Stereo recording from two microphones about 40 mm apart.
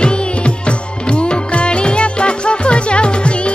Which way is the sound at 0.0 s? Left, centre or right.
Left.